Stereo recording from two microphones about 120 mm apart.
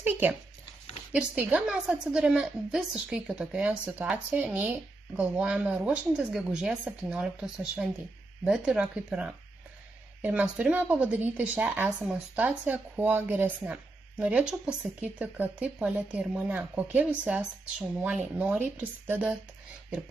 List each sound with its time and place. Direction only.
0.0 s speech: 15° right (ahead or behind)